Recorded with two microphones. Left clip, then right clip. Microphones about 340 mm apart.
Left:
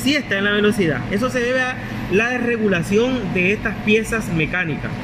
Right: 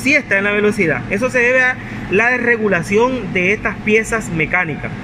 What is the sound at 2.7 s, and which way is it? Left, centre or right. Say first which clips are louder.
Speech: right 4 dB; right.